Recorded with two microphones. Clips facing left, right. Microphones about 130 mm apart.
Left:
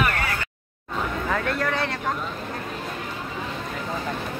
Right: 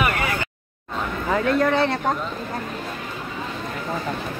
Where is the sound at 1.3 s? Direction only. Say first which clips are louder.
Right 8 dB; 20° right (ahead or behind).